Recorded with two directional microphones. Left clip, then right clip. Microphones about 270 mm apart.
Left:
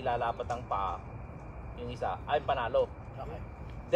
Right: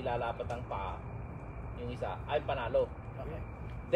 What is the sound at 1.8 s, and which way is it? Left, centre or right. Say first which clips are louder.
Speech: left 4 dB; centre.